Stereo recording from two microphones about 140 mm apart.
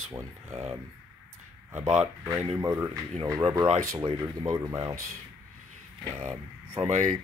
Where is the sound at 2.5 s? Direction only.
20° right (ahead or behind).